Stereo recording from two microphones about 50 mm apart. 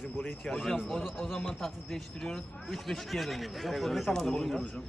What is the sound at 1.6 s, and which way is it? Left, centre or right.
Speech, centre.